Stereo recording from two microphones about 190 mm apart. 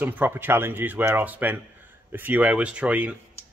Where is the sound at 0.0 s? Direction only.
10° right (ahead or behind).